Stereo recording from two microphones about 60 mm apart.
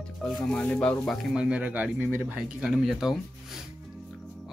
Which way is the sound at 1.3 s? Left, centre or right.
Centre.